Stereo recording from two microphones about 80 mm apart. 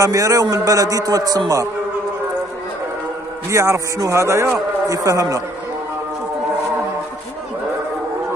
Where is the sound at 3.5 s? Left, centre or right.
Right.